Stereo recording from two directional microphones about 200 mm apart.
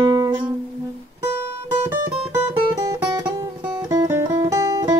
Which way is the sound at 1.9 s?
5° right (ahead or behind).